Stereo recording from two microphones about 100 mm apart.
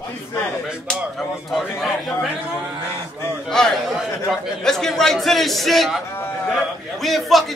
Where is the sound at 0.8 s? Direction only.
Centre (ahead or behind).